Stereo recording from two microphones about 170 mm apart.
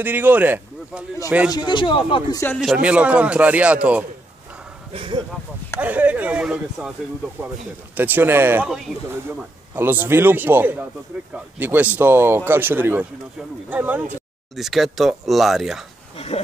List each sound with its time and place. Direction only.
0.0 s speech: 10° right (ahead or behind)
1.5 s speech: 25° left (ahead or behind)
2.6 s speech: 5° right (ahead or behind)
4.9 s speech: 30° right (ahead or behind)
5.8 s speech: 10° right (ahead or behind)
7.9 s speech: 10° right (ahead or behind)